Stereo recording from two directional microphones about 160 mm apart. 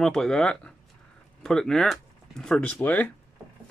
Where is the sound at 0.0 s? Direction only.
5° left (ahead or behind).